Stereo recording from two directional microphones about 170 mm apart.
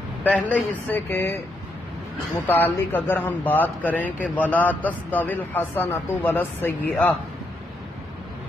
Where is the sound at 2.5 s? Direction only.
10° left (ahead or behind).